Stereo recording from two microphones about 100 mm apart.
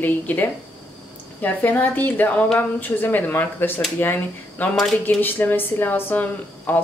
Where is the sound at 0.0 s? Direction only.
15° left (ahead or behind).